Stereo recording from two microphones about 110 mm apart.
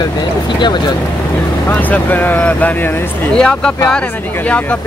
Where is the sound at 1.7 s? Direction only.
15° left (ahead or behind).